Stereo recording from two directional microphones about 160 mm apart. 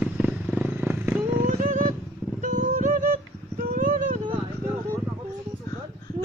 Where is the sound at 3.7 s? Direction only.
55° right (ahead or behind).